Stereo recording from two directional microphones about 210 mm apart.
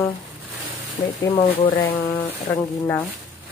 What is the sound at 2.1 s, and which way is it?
Speech, 15° left (ahead or behind).